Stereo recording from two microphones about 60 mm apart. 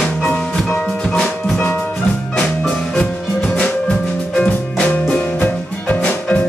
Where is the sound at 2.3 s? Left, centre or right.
Centre.